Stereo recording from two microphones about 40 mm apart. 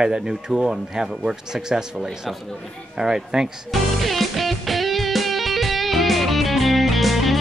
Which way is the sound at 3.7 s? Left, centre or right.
Centre.